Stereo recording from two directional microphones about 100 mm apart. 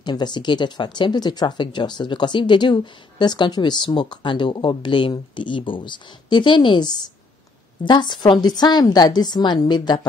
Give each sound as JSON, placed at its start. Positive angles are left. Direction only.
{"t": 0.0, "sound": "speech", "side_deg": 45}